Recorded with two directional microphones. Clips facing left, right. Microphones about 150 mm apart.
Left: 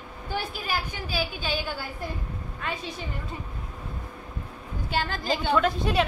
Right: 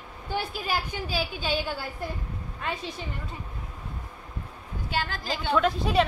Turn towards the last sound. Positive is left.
turn(degrees=0)  # may be behind; listen again after turning